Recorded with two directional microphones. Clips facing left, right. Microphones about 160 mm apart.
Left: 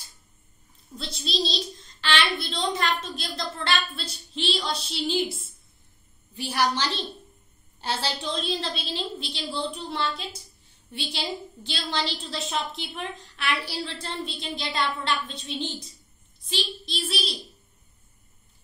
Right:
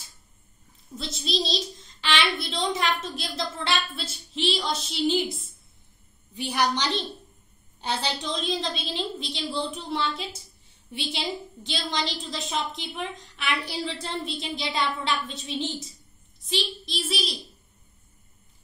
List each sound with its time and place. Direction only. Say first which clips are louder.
0.9 s a child's voice: right 1 dB; centre (ahead or behind)